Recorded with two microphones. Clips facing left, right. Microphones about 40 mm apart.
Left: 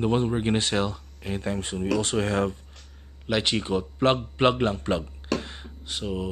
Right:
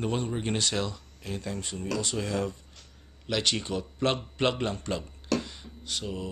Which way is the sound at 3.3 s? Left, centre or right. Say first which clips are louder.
Left 4 dB; left.